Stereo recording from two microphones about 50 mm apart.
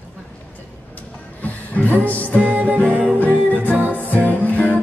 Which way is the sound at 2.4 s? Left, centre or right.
Right.